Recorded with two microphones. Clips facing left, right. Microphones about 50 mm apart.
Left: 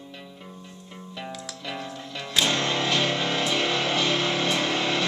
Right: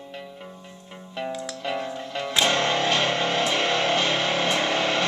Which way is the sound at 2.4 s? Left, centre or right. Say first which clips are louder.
Right 2 dB; right.